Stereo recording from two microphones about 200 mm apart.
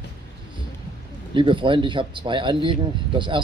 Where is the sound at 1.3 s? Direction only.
25° right (ahead or behind).